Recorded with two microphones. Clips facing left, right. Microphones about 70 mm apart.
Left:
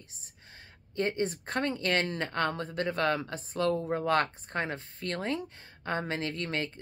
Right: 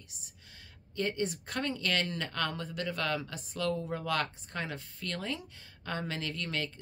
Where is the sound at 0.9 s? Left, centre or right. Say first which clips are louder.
Left 3 dB; left.